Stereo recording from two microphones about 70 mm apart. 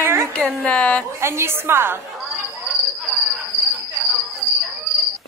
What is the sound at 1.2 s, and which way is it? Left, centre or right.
Speech, right.